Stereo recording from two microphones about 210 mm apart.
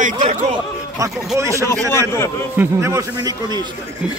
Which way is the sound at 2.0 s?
10° left (ahead or behind).